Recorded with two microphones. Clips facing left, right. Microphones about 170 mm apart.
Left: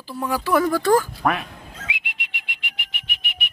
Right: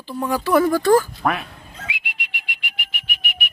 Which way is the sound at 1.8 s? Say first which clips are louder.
Right 3 dB; 20° left (ahead or behind).